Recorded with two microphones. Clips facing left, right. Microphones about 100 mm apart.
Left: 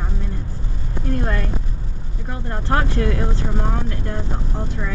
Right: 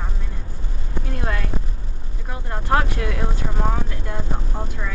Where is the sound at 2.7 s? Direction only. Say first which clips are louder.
Even; 5° right (ahead or behind).